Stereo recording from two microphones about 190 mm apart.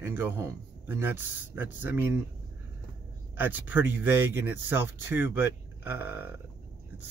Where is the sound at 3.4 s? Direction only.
10° right (ahead or behind).